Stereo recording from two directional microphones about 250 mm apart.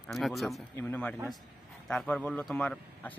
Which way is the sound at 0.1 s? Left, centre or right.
Centre.